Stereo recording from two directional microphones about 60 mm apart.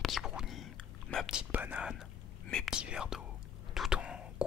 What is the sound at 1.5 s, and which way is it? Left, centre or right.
Whispering, right.